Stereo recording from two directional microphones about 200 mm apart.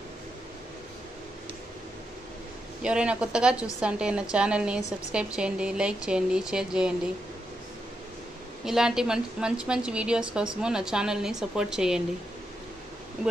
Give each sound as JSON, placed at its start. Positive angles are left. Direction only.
{"t": 2.8, "sound": "speech", "side_deg": -5}
{"t": 8.6, "sound": "speech", "side_deg": 0}